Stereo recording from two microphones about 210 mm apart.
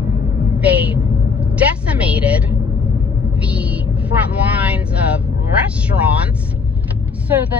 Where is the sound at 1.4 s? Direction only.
5° right (ahead or behind).